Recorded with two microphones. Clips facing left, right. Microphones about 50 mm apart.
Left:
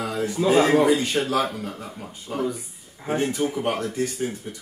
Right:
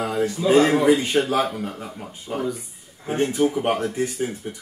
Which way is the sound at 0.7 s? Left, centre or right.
Right.